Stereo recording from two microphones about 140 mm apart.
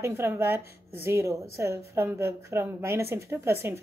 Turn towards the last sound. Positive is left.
turn(degrees=-20)  # may be behind; listen again after turning